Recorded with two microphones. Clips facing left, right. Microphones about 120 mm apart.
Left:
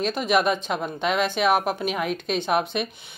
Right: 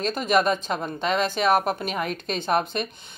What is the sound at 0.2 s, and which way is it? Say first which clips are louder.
A woman's voice: right 1 dB; 5° left (ahead or behind).